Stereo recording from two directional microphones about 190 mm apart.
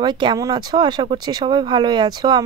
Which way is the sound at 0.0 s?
25° right (ahead or behind).